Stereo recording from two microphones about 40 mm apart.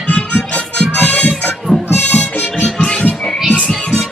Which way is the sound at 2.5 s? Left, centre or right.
Centre.